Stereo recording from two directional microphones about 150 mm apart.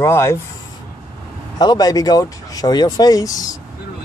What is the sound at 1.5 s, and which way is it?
Speech, 25° left (ahead or behind).